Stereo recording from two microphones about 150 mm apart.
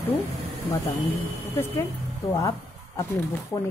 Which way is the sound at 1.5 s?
15° left (ahead or behind).